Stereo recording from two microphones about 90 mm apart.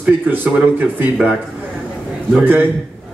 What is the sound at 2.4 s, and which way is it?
Speech, 20° right (ahead or behind).